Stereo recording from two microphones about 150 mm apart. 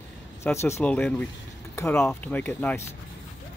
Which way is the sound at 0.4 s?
15° left (ahead or behind).